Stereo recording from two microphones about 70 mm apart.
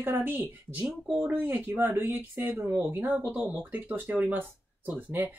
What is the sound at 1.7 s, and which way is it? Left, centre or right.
Speech, right.